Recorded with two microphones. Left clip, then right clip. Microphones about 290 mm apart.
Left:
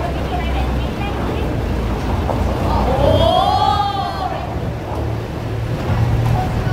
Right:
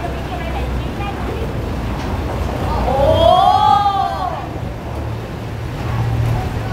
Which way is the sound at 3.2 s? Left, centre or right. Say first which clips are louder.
Right 7 dB; centre.